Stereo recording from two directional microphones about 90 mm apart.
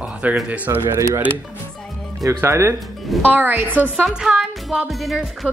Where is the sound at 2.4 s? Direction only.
30° right (ahead or behind).